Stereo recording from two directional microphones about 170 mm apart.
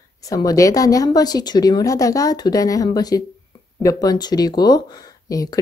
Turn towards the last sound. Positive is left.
turn(degrees=20)  # may be behind; listen again after turning